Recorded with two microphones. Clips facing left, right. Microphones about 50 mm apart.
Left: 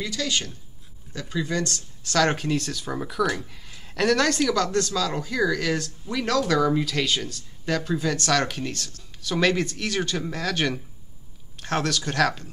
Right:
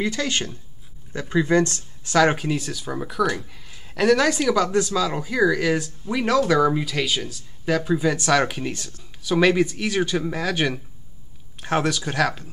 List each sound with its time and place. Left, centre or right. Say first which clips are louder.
0.0 s speech: right 4 dB; right
2.0 s speech: right 4 dB; centre